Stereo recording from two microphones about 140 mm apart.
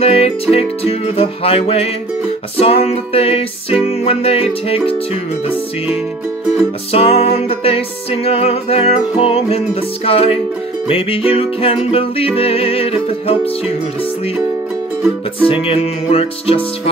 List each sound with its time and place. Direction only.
0.0 s music: 45° left (ahead or behind)
6.9 s music: 45° left (ahead or behind)
15.4 s music: 40° left (ahead or behind)